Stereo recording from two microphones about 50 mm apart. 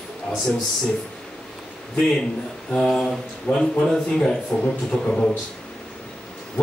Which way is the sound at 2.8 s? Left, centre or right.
Centre.